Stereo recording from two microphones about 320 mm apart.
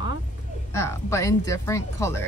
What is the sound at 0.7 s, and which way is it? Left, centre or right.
Speech, centre.